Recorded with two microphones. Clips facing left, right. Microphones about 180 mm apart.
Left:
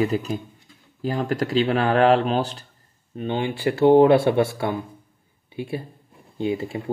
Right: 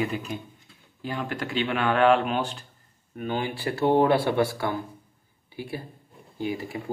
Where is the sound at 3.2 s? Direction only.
25° left (ahead or behind).